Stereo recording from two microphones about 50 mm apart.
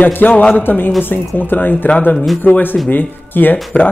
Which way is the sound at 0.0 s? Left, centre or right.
Left.